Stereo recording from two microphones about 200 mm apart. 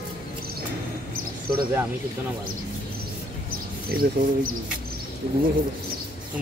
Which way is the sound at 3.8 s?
50° right (ahead or behind).